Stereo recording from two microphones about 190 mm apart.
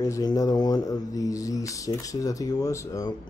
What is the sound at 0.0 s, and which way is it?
Speech, 20° left (ahead or behind).